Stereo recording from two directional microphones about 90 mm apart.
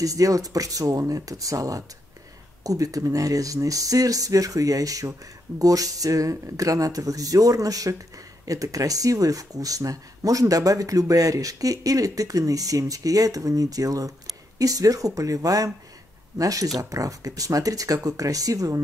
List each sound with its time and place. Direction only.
0.0 s speech: 40° right (ahead or behind)